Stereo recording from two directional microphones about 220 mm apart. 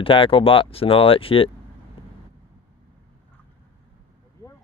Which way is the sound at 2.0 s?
25° left (ahead or behind).